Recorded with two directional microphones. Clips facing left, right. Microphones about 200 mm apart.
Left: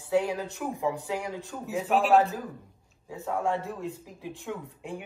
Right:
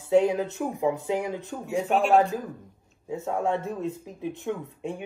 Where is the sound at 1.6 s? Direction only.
Centre (ahead or behind).